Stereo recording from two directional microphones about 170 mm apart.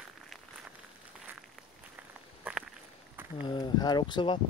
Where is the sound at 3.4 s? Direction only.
25° left (ahead or behind).